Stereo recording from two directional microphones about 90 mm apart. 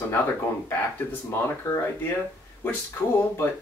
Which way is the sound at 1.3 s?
30° left (ahead or behind).